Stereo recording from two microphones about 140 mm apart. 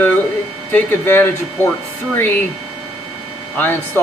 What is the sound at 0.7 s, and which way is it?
Speech, 15° left (ahead or behind).